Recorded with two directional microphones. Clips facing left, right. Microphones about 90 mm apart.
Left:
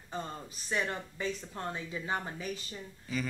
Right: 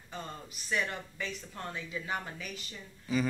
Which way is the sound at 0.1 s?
30° left (ahead or behind).